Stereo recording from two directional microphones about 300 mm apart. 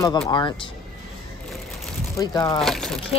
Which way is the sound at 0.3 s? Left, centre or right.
Centre.